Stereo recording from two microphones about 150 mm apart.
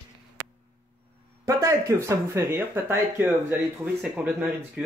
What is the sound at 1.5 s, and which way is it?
Speech, 20° right (ahead or behind).